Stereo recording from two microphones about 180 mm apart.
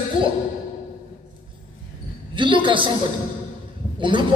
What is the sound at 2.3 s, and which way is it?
Speech, 25° right (ahead or behind).